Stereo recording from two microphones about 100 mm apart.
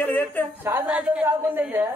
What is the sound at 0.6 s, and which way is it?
A woman's voice, 20° right (ahead or behind).